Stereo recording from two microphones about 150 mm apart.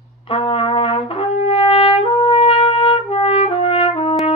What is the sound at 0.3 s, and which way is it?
Trumpet, 35° left (ahead or behind).